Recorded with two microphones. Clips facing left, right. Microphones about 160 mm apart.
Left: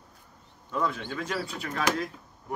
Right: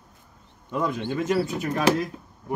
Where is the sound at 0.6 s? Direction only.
15° right (ahead or behind).